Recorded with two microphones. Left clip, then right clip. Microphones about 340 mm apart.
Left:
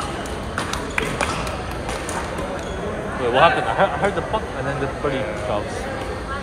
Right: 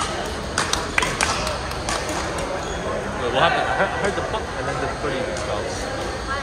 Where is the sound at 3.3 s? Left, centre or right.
Centre.